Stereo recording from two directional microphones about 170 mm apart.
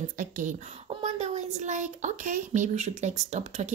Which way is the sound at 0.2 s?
50° right (ahead or behind).